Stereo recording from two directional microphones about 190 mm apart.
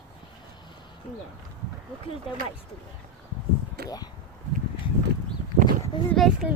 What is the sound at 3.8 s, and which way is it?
Speech, 60° right (ahead or behind).